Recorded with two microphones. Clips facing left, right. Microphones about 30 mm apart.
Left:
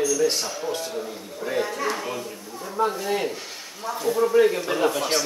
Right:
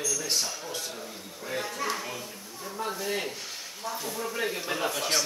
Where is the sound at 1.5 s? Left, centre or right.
Centre.